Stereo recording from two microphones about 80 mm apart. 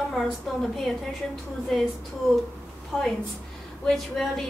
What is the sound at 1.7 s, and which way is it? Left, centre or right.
Speech, centre.